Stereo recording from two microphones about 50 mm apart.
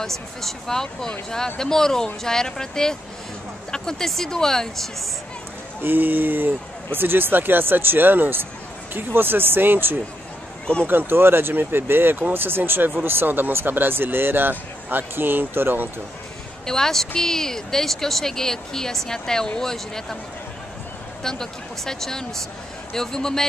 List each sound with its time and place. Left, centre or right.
0.0 s speech: centre
5.8 s speech: right
16.6 s speech: centre
21.2 s speech: centre